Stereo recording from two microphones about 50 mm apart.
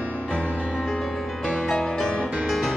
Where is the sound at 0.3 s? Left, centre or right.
Left.